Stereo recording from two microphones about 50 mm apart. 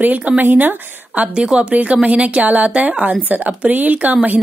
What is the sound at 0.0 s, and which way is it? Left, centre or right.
Speech, right.